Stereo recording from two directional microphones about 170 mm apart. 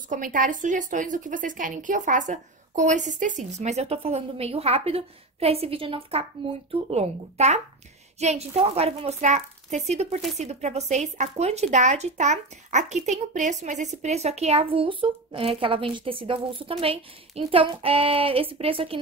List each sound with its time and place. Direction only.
0.1 s a woman's voice: 50° right (ahead or behind); by 18.9 s 35° right (ahead or behind)